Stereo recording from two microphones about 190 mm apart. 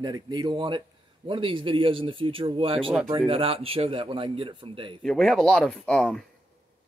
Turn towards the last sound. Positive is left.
turn(degrees=5)  # may be behind; listen again after turning